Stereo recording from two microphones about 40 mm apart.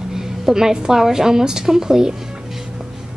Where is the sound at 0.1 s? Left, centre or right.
Centre.